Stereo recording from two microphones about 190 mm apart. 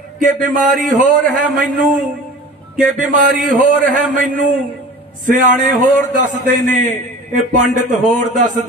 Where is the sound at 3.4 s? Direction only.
45° right (ahead or behind).